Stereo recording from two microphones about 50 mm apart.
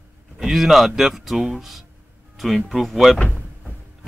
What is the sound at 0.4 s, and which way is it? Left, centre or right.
Speech, centre.